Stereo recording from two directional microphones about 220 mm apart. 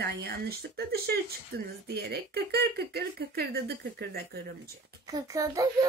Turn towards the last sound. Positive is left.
turn(degrees=-15)  # may be behind; listen again after turning